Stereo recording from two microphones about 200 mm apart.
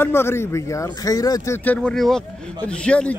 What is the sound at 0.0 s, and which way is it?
A man's voice, 10° left (ahead or behind).